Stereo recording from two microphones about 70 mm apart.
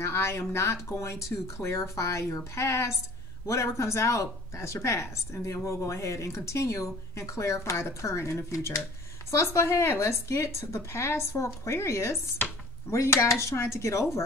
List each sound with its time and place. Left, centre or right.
0.0 s a woman's voice: left